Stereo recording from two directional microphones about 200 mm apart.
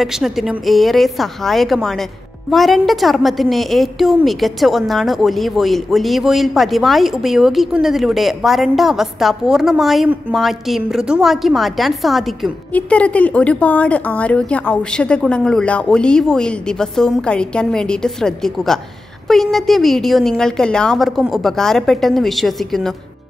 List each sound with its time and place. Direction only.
0.0 s a woman's voice: centre (ahead or behind)